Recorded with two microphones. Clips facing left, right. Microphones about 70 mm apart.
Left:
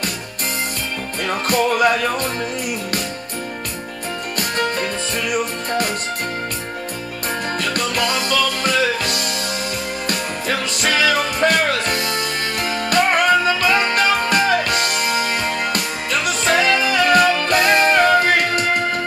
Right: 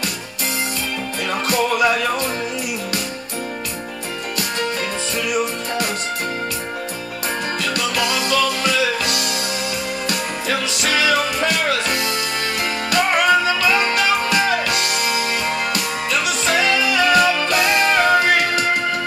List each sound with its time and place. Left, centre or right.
1.5 s speech: left
4.4 s music: left
7.6 s music: left